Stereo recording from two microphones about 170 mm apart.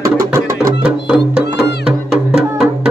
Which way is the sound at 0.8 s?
5° right (ahead or behind).